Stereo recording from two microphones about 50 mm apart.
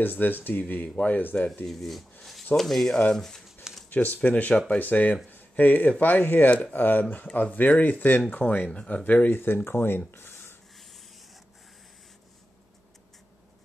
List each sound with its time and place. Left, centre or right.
0.0 s speech: left
0.8 s speech: left
1.7 s speech: centre
3.9 s speech: left
9.3 s speech: left